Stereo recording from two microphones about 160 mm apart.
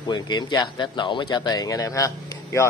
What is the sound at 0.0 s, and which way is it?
A man's voice, 30° left (ahead or behind).